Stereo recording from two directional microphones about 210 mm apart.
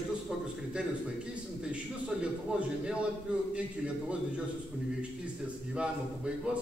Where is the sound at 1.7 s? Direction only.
5° right (ahead or behind).